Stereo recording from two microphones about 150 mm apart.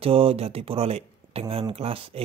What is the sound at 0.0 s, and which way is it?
Speech, 40° right (ahead or behind).